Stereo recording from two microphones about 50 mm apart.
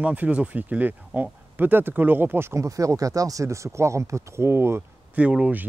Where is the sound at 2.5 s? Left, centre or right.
Right.